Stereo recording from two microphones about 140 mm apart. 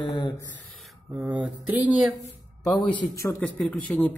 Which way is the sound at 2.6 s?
30° left (ahead or behind).